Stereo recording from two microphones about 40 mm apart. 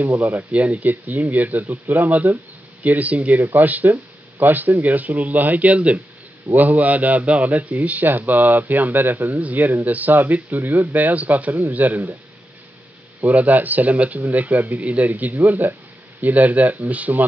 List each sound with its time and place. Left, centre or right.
0.2 s a man's voice: right
13.2 s a man's voice: right